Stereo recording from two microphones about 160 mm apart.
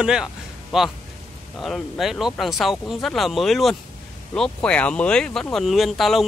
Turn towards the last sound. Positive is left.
turn(degrees=0)  # may be behind; listen again after turning